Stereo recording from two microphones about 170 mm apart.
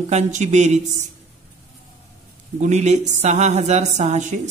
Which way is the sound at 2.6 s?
45° right (ahead or behind).